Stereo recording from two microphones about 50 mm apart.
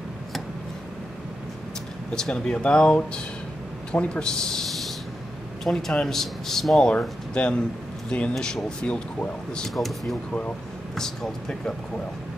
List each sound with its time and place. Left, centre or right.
2.1 s a man's voice: centre
6.9 s speech: left
9.8 s speech: centre
11.0 s a man's voice: centre